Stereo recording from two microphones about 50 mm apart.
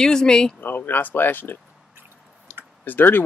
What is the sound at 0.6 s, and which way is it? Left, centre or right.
Speech, left.